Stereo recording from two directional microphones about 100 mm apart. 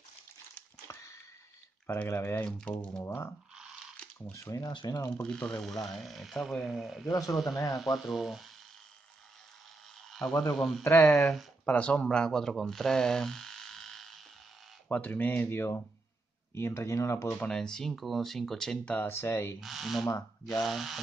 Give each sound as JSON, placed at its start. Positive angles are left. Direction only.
{"t": 0.9, "sound": "a sound", "side_deg": 30}
{"t": 1.9, "sound": "speech", "side_deg": 20}
{"t": 5.1, "sound": "speech", "side_deg": 10}
{"t": 7.1, "sound": "speech", "side_deg": 40}
{"t": 7.8, "sound": "speech", "side_deg": 0}
{"t": 10.1, "sound": "speech", "side_deg": 5}
{"t": 10.8, "sound": "speech", "side_deg": 25}
{"t": 11.6, "sound": "speech", "side_deg": 10}
{"t": 14.9, "sound": "speech", "side_deg": 15}
{"t": 17.4, "sound": "speech", "side_deg": 5}
{"t": 18.9, "sound": "speech", "side_deg": 25}
{"t": 19.6, "sound": "speech", "side_deg": 0}